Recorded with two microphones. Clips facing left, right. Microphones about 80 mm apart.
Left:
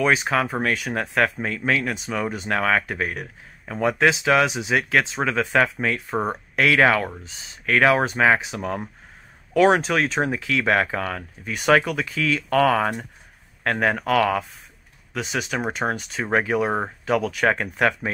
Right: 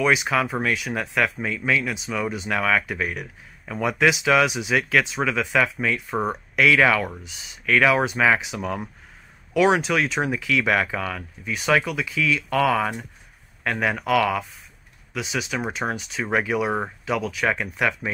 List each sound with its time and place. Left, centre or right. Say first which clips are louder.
0.0 s speech: even; left
17.0 s speech: left 6 dB; left